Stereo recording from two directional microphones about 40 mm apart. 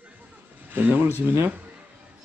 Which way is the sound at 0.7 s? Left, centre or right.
Right.